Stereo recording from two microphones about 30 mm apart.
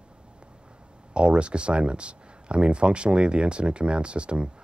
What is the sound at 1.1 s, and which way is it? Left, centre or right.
Speech, right.